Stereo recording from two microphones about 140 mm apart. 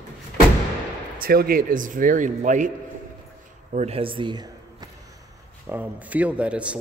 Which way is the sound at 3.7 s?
50° right (ahead or behind).